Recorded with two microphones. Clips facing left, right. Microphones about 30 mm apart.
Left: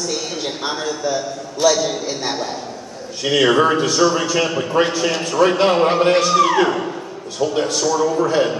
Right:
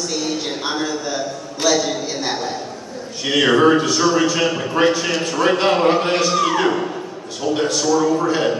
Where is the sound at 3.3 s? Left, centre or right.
Centre.